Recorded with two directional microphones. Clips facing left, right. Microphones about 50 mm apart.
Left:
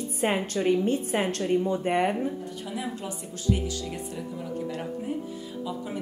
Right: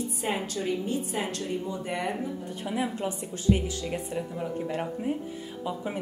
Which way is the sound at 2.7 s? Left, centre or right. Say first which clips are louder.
Right 5 dB; right.